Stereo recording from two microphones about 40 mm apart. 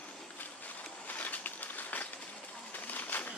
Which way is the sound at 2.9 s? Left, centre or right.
Left.